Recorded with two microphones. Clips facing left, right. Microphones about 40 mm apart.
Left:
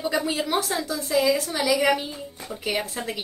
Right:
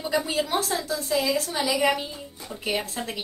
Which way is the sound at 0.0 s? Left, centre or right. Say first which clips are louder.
Left 1 dB; centre.